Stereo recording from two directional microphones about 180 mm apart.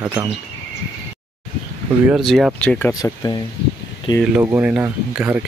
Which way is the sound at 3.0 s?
20° left (ahead or behind).